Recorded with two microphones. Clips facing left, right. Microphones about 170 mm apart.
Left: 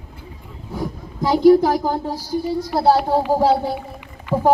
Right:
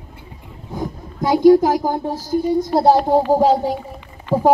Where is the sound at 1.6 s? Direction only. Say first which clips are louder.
Right 1 dB; 20° right (ahead or behind).